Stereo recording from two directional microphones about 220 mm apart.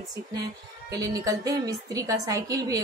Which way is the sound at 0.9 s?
15° right (ahead or behind).